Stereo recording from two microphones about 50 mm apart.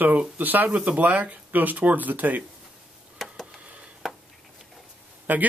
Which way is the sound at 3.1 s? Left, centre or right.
Centre.